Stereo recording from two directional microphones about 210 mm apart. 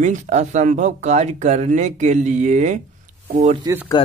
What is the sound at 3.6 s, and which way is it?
Speech, 10° right (ahead or behind).